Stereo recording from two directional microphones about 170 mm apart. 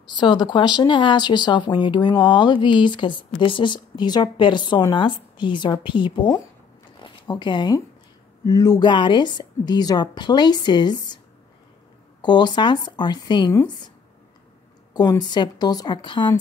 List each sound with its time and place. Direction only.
0.1 s speech: 25° left (ahead or behind)
7.0 s a sound: 25° left (ahead or behind)
8.5 s speech: 25° left (ahead or behind)
12.2 s speech: 25° left (ahead or behind)
15.0 s speech: 25° left (ahead or behind)